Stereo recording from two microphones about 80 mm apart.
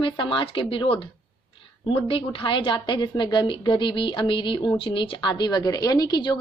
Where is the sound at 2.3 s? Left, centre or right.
Left.